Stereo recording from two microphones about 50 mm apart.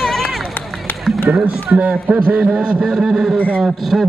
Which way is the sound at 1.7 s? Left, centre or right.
Right.